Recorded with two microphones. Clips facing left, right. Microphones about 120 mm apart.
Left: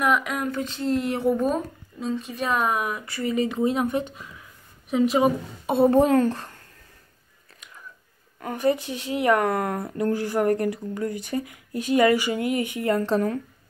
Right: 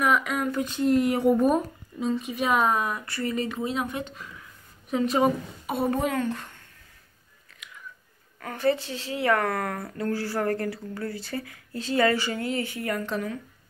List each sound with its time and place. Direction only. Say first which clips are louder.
0.0 s speech: left 1 dB; centre (ahead or behind)
2.6 s a woman's voice: even; 5° left (ahead or behind); by 4.0 s 25° left (ahead or behind)
4.9 s a woman's voice: left 3 dB; 5° left (ahead or behind)
5.7 s a woman's voice: left 8 dB; 30° left (ahead or behind)
7.6 s whispering: right 1 dB; 40° left (ahead or behind)
8.4 s a woman's voice: left 2 dB; 20° left (ahead or behind); by 13.4 s 40° left (ahead or behind)